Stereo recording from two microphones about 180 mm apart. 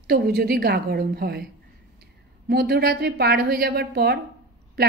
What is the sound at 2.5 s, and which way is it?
A woman's voice, 60° right (ahead or behind).